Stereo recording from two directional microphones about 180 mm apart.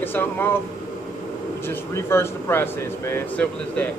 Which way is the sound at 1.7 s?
15° left (ahead or behind).